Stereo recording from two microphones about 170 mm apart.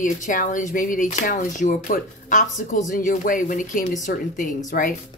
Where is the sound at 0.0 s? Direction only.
50° left (ahead or behind).